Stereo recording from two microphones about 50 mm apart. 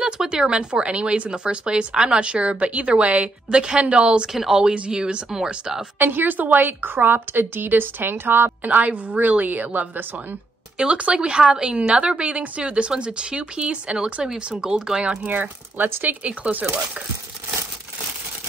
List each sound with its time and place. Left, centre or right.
0.0 s a woman's voice: centre
4.3 s speech: centre
5.9 s a woman's voice: right
8.6 s a woman's voice: right
10.8 s a woman's voice: right
15.2 s a woman's voice: right
16.3 s a woman's voice: right